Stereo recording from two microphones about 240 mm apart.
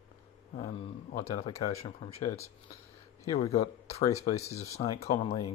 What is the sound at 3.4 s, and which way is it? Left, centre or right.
Speech, left.